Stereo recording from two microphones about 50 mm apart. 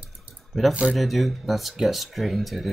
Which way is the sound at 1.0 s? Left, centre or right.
Centre.